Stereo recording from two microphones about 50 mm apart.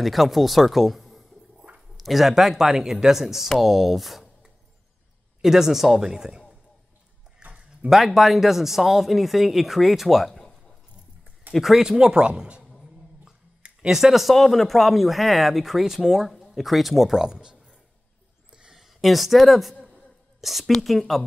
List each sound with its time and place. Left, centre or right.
0.0 s speech: centre
7.9 s speech: centre
11.5 s speech: centre
18.5 s a sound: centre
18.8 s a woman's voice: centre